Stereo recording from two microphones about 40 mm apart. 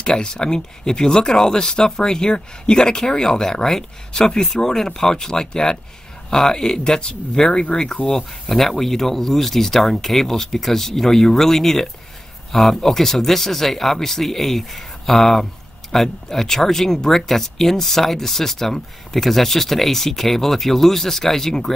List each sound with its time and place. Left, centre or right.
0.0 s speech: centre
8.1 s speech: centre